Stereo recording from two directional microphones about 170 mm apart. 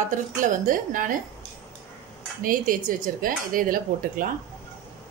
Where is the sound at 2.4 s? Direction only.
55° right (ahead or behind).